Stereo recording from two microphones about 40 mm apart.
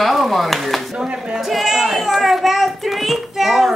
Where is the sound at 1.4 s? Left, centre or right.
Centre.